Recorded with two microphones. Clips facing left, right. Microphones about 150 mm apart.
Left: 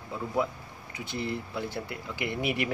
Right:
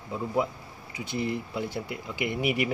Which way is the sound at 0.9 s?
15° right (ahead or behind).